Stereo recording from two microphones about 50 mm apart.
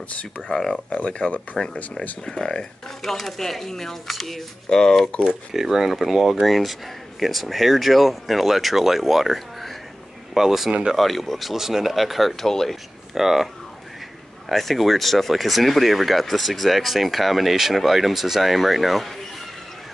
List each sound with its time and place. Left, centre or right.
0.5 s speech: centre
0.9 s speech: left
3.0 s speech: centre
5.2 s speech: centre
13.1 s speech: centre
14.5 s speech: centre